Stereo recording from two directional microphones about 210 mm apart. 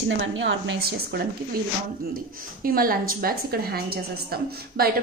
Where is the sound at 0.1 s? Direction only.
65° right (ahead or behind).